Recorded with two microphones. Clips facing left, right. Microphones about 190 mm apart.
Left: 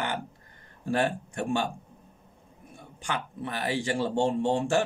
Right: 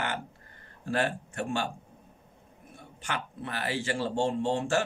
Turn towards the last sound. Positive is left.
turn(degrees=15)  # may be behind; listen again after turning